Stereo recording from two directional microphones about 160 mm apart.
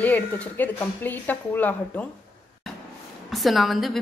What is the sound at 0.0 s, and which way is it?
Speech, 10° left (ahead or behind).